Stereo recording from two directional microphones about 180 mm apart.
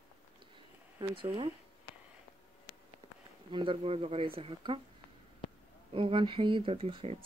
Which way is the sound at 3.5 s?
25° right (ahead or behind).